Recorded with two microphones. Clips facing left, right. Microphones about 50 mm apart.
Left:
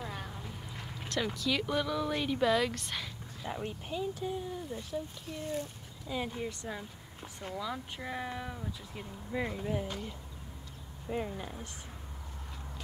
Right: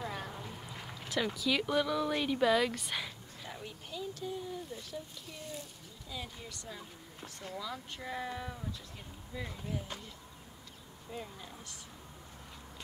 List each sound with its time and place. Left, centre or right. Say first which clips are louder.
0.0 s a sound: right 1 dB; centre
1.0 s speech: even; centre
3.4 s speech: left 8 dB; left
4.1 s speech: left 3 dB; centre
5.5 s speech: left 8 dB; left
7.5 s speech: left 4 dB; centre
8.9 s speech: left 8 dB; left
11.1 s speech: left 8 dB; left